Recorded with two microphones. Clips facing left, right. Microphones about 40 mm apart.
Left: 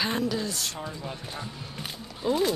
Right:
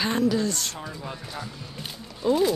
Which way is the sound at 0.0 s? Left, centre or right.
Centre.